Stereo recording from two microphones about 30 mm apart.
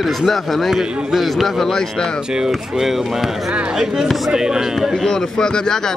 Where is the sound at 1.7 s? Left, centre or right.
Centre.